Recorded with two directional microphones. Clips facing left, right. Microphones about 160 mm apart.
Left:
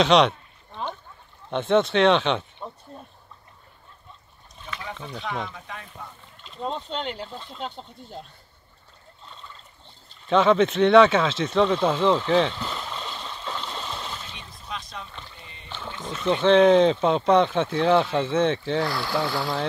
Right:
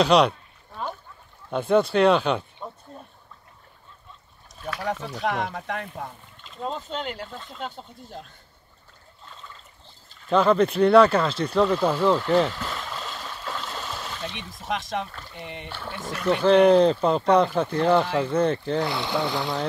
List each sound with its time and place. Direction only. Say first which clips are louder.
0.0 s rowboat: even; centre (ahead or behind)
1.5 s speech: even; centre (ahead or behind)
5.2 s speech: right 5 dB; 70° right (ahead or behind)
6.4 s speech: left 1 dB; centre (ahead or behind)
10.2 s speech: even; centre (ahead or behind)
14.2 s a sound: right 8 dB; 90° right
15.3 s speech: right 11 dB; 85° right
15.7 s speech: left 2 dB; 10° right (ahead or behind)